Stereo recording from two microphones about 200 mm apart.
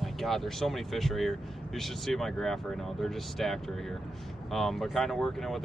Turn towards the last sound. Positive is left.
turn(degrees=0)  # may be behind; listen again after turning